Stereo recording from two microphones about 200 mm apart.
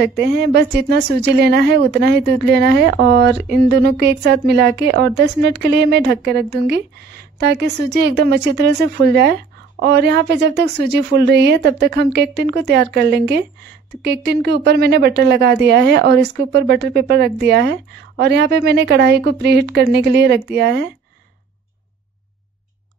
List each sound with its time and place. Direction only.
0.0 s speech: 55° right (ahead or behind)